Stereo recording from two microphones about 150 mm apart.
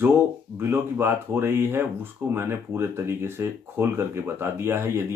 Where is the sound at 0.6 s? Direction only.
15° right (ahead or behind).